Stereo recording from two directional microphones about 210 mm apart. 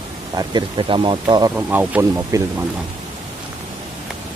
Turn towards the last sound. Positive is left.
turn(degrees=-10)  # may be behind; listen again after turning